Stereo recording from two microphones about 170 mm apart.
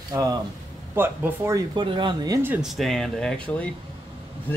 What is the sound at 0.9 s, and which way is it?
Speech, 10° right (ahead or behind).